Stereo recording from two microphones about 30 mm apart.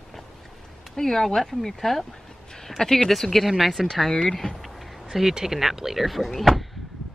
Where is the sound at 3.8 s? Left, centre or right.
Centre.